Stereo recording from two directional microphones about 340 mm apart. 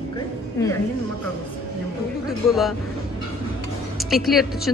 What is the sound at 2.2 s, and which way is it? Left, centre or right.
Speech, centre.